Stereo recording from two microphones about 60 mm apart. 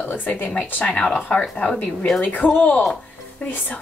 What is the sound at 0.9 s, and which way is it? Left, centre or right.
A woman's voice, centre.